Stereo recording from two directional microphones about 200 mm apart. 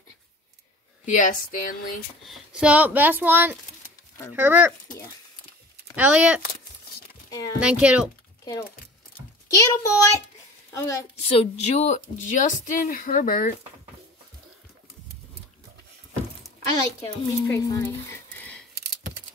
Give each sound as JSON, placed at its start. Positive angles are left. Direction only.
{"t": 1.0, "sound": "a woman's voice", "side_deg": 40}
{"t": 2.2, "sound": "speech", "side_deg": 0}
{"t": 5.9, "sound": "speech", "side_deg": -5}
{"t": 7.2, "sound": "speech", "side_deg": 15}
{"t": 7.6, "sound": "speech", "side_deg": -5}
{"t": 9.5, "sound": "a child's voice", "side_deg": 15}
{"t": 11.2, "sound": "a woman's voice", "side_deg": 30}
{"t": 17.0, "sound": "speech", "side_deg": 15}